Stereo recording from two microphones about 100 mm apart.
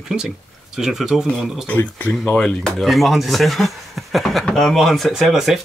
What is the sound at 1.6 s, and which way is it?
Speech, 15° left (ahead or behind).